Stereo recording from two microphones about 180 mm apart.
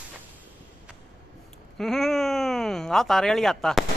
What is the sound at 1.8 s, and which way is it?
Speech, centre (ahead or behind).